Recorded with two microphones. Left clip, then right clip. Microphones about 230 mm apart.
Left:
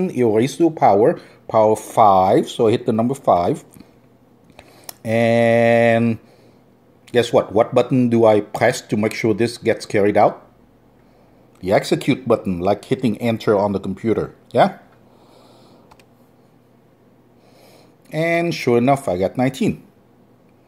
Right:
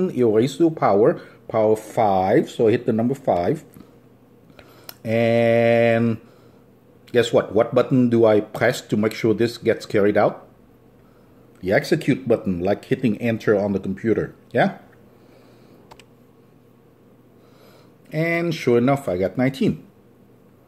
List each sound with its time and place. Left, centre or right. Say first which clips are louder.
0.0 s speech: left 1 dB; left
11.6 s speech: left 2 dB; left
18.0 s speech: left 4 dB; left